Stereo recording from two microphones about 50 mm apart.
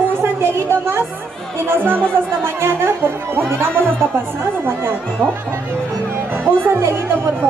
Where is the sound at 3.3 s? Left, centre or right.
Right.